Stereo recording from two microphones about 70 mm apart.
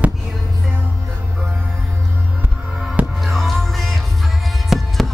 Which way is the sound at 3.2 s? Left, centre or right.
Centre.